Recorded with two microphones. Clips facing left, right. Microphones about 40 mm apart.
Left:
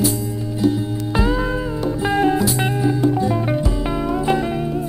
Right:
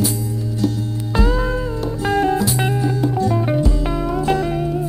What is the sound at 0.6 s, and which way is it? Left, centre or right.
Music, centre.